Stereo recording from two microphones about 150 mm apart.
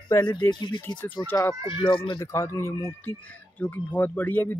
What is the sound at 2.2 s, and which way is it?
Speech, 20° left (ahead or behind).